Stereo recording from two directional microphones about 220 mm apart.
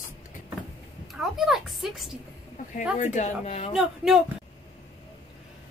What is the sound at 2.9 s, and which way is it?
Speech, 35° left (ahead or behind).